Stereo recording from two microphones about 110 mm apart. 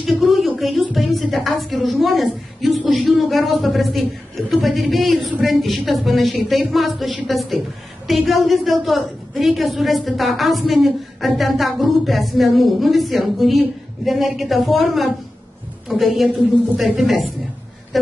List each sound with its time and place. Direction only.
0.0 s a woman's voice: centre (ahead or behind)